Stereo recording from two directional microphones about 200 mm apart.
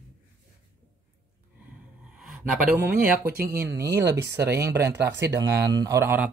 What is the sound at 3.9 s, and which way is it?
Speech, 55° right (ahead or behind).